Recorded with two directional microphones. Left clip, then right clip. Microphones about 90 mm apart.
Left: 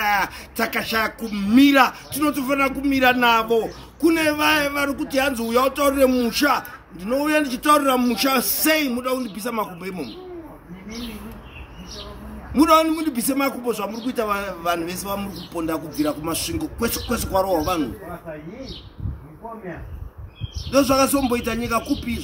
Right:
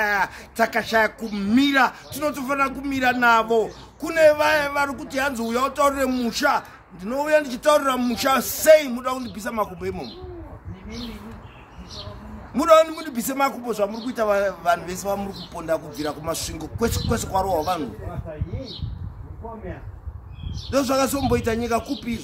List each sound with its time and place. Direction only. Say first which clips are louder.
0.1 s a man's voice: left 1 dB; 45° right (ahead or behind)
2.1 s a man's voice: left 5 dB; 55° right (ahead or behind)
12.5 s a man's voice: even; 55° right (ahead or behind)
20.7 s a man's voice: left 4 dB; 50° right (ahead or behind)